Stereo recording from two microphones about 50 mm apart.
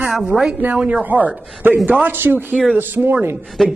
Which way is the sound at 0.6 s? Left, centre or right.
Right.